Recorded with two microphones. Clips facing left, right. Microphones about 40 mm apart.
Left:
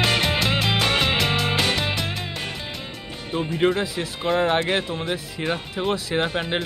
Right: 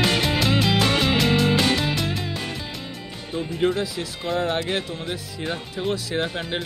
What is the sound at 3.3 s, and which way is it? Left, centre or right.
Speech, left.